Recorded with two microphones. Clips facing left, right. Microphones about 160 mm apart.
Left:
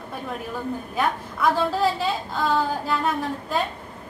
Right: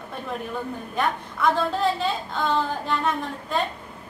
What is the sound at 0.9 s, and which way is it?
A woman's voice, centre (ahead or behind).